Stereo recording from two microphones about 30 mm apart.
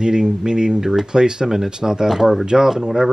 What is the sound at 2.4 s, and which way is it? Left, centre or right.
Speech, right.